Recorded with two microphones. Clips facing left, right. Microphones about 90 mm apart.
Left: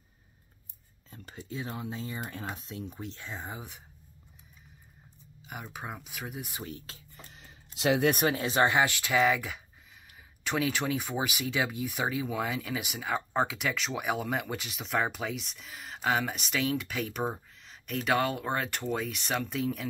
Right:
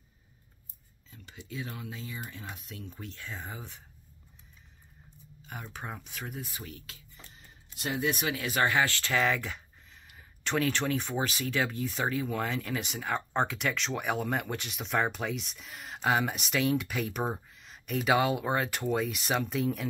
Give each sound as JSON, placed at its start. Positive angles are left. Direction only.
{"t": 1.1, "sound": "speech", "side_deg": 40}
{"t": 5.5, "sound": "speech", "side_deg": 10}
{"t": 6.5, "sound": "speech", "side_deg": 30}
{"t": 7.3, "sound": "a sound", "side_deg": 90}
{"t": 8.1, "sound": "speech", "side_deg": 45}
{"t": 8.4, "sound": "speech", "side_deg": 25}